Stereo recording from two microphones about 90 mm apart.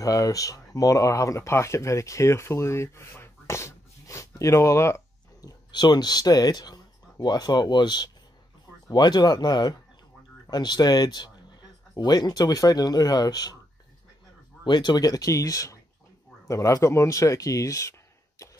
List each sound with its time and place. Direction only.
0.0 s speech: 40° left (ahead or behind)
14.6 s speech: 55° left (ahead or behind); by 17.9 s 35° left (ahead or behind)